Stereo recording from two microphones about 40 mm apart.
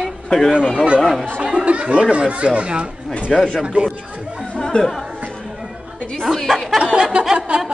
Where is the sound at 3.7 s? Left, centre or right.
Right.